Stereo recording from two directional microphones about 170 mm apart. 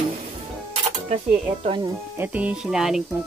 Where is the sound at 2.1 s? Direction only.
10° right (ahead or behind).